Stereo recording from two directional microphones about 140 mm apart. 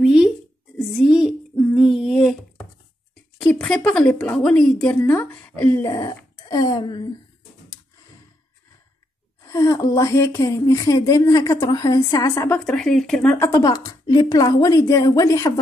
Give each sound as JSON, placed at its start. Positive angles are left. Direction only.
{"t": 0.0, "sound": "a sound", "side_deg": -5}
{"t": 3.3, "sound": "a woman's voice", "side_deg": 5}
{"t": 6.5, "sound": "a woman's voice", "side_deg": 30}
{"t": 9.5, "sound": "speech", "side_deg": 20}
{"t": 12.4, "sound": "a woman's voice", "side_deg": 5}
{"t": 13.4, "sound": "speech", "side_deg": 20}